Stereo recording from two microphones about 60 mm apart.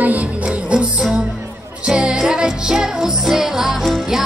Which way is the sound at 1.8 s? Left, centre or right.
Centre.